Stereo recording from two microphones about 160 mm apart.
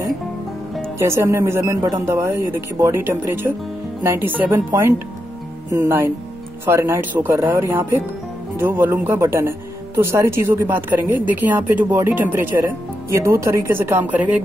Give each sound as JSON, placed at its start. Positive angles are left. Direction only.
{"t": 0.9, "sound": "speech", "side_deg": -15}